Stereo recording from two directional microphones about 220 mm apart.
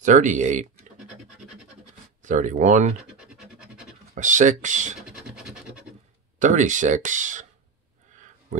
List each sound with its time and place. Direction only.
0.0 s speech: 35° right (ahead or behind)
2.2 s speech: 35° right (ahead or behind)
3.2 s scratch: 5° right (ahead or behind)
4.1 s speech: 35° right (ahead or behind)
5.0 s scratch: 5° right (ahead or behind)
6.4 s speech: 35° right (ahead or behind)